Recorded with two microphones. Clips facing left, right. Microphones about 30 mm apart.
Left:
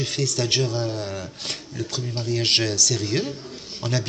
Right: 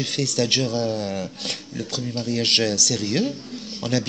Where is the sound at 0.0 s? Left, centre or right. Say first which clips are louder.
Right 2 dB; right.